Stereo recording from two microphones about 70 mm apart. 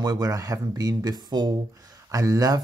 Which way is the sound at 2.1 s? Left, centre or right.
Right.